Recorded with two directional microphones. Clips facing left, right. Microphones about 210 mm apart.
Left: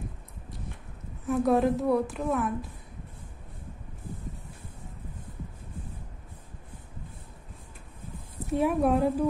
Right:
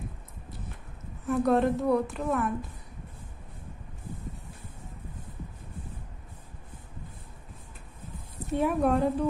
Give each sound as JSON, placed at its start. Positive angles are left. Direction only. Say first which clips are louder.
{"t": 1.2, "sound": "a woman's voice", "louder": "even", "side_deg": 0}
{"t": 8.5, "sound": "a woman's voice", "louder": "left 1 dB", "side_deg": 0}